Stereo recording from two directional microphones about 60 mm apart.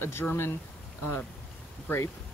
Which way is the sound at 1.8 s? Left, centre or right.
Left.